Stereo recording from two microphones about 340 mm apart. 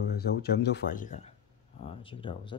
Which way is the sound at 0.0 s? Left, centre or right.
Left.